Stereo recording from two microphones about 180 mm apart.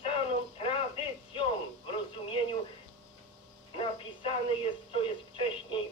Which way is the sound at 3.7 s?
30° left (ahead or behind).